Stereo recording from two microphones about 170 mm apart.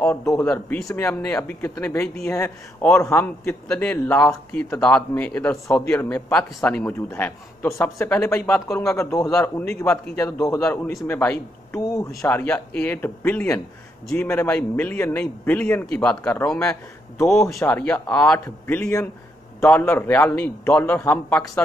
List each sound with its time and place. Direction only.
0.0 s a man's voice: 15° left (ahead or behind)
10.3 s a man's voice: 15° left (ahead or behind)
12.1 s a man's voice: centre (ahead or behind)